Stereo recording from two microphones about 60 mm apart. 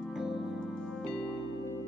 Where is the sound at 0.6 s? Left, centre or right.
Centre.